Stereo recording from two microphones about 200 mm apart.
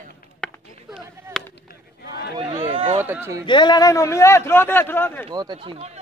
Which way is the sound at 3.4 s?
20° left (ahead or behind).